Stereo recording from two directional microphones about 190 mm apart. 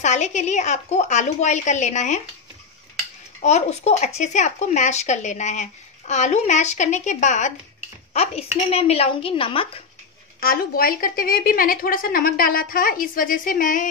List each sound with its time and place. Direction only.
0.0 s speech: 40° left (ahead or behind)
3.4 s a woman's voice: 35° left (ahead or behind)
10.4 s a woman's voice: 50° left (ahead or behind)